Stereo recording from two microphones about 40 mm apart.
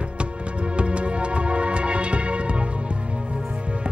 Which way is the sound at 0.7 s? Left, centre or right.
Right.